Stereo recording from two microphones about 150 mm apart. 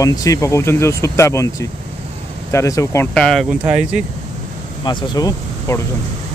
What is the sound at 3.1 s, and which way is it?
Speech, 5° left (ahead or behind).